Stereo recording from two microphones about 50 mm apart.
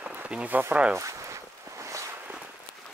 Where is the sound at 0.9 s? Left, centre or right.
Right.